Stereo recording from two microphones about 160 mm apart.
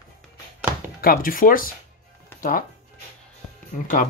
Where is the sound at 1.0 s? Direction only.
60° left (ahead or behind).